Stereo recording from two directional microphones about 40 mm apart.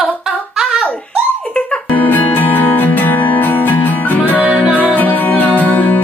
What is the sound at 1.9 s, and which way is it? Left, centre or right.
Music, left.